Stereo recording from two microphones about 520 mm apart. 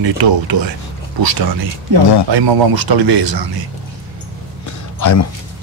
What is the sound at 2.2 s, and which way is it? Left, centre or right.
Speech, right.